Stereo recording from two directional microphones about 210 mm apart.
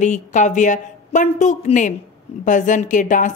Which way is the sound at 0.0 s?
35° left (ahead or behind).